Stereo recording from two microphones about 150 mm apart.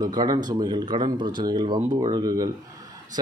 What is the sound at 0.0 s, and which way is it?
Speech, 25° right (ahead or behind).